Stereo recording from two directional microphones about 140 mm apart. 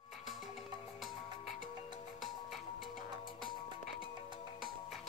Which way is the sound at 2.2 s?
Centre (ahead or behind).